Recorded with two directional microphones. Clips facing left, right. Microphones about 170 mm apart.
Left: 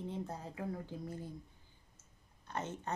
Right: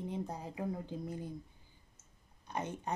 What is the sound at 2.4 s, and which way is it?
Speech, 15° right (ahead or behind).